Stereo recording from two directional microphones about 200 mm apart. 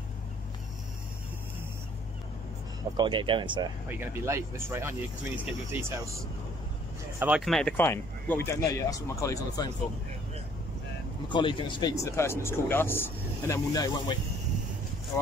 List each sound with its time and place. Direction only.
3.0 s speech: 25° right (ahead or behind)
3.9 s speech: 10° right (ahead or behind)
7.2 s speech: 5° right (ahead or behind); by 9.7 s 15° left (ahead or behind)
11.2 s speech: 25° left (ahead or behind)